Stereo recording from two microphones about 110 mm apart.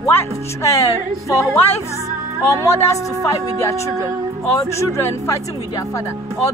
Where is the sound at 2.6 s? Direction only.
30° left (ahead or behind).